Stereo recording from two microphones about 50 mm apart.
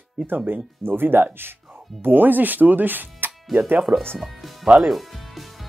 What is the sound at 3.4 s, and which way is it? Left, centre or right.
Speech, centre.